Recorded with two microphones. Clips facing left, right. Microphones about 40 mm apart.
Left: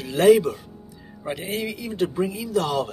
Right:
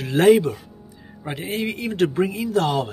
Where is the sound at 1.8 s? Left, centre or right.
Right.